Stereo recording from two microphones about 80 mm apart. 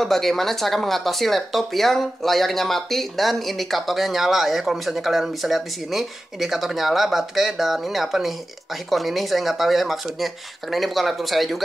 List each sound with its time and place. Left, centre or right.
0.0 s speech: centre